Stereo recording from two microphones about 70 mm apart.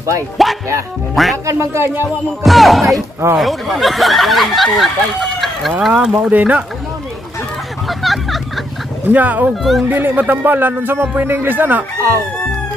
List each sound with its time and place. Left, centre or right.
0.4 s speech: centre
1.4 s speech: right
2.4 s speech: centre
6.2 s speech: right
8.0 s vehicle: centre
9.0 s speech: right
9.5 s speech: centre
9.8 s speech: right